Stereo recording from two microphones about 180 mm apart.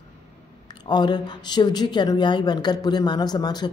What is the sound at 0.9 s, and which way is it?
A woman's voice, 25° left (ahead or behind).